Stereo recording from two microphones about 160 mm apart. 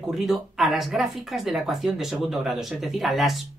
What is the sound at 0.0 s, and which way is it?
Speech, centre (ahead or behind).